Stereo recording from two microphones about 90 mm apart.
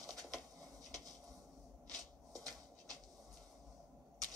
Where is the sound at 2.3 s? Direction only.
45° right (ahead or behind).